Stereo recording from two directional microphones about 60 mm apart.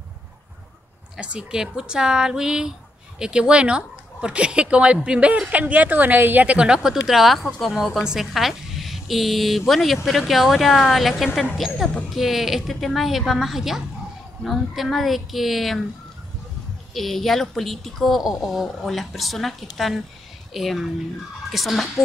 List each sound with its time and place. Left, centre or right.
1.2 s a woman's voice: centre
16.9 s speech: centre